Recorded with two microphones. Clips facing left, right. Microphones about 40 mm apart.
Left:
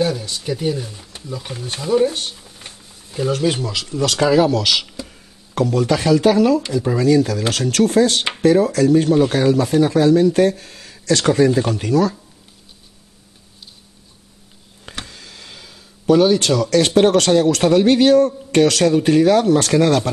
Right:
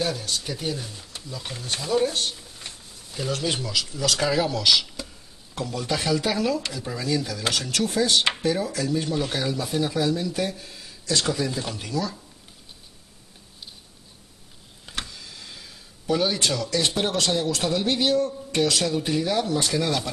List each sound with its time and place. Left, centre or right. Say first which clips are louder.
0.0 s speech: left 7 dB; centre
2.2 s a sound: left 1 dB; centre
3.5 s speech: left 3 dB; left
3.8 s speech: left 6 dB; left
4.2 s speech: left 10 dB; left
5.5 s speech: left 11 dB; left
15.0 s speech: left 3 dB; left